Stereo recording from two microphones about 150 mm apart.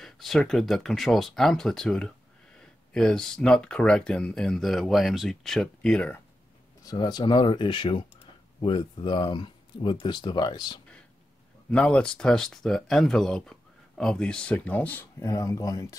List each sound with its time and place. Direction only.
0.0 s speech: centre (ahead or behind)
6.8 s speech: 25° left (ahead or behind)
11.7 s speech: 5° left (ahead or behind)